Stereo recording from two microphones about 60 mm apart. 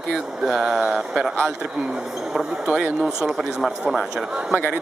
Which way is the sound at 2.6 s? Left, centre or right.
Centre.